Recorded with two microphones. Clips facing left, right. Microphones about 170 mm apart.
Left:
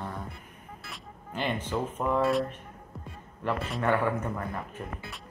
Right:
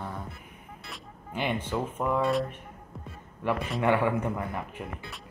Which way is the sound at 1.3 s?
15° right (ahead or behind).